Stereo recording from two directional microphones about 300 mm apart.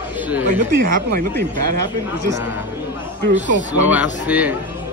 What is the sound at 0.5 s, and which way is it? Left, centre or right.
Speech, right.